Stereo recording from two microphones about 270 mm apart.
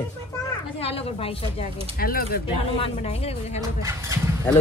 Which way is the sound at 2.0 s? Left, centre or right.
Left.